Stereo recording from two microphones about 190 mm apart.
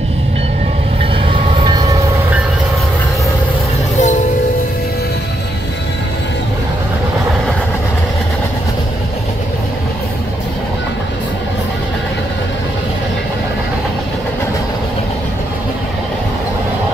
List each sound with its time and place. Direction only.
1.3 s train: 25° right (ahead or behind)
4.0 s train: 40° left (ahead or behind)